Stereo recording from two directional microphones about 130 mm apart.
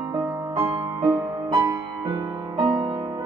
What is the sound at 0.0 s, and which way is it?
Music, 20° right (ahead or behind).